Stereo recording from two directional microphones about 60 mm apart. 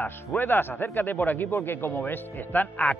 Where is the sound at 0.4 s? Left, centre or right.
Left.